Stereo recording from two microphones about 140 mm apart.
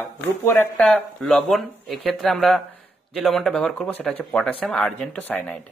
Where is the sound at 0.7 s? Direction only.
Centre (ahead or behind).